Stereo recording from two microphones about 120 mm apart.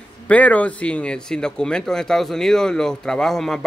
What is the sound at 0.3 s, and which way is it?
Speech, 10° left (ahead or behind).